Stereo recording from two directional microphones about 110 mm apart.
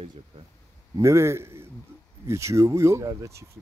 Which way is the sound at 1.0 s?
25° right (ahead or behind).